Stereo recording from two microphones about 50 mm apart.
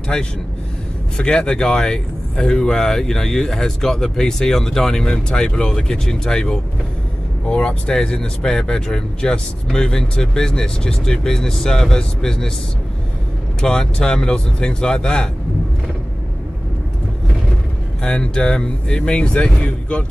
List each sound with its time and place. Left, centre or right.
0.1 s speech: centre
13.6 s speech: centre
18.0 s speech: centre